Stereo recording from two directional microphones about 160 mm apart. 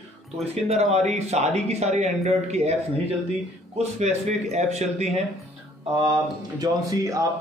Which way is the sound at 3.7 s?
45° right (ahead or behind).